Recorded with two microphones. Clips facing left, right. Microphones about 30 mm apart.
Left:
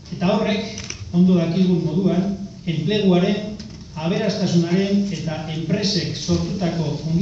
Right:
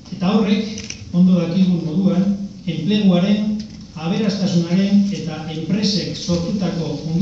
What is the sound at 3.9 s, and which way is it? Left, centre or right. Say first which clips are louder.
Speech: even; centre.